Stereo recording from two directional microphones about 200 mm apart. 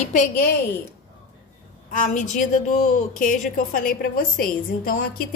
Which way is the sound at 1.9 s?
40° left (ahead or behind).